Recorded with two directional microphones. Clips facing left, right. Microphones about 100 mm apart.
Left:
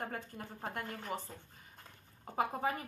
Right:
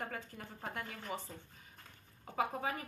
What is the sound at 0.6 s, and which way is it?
Speech, 50° left (ahead or behind).